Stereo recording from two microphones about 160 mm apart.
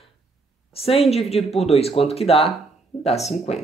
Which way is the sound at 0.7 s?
35° left (ahead or behind).